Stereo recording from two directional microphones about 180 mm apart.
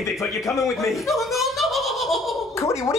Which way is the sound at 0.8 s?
Centre (ahead or behind).